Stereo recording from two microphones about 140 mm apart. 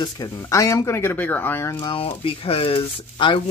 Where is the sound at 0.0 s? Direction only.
25° left (ahead or behind).